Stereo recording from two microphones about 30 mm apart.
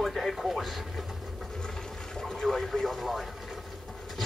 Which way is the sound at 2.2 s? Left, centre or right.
Centre.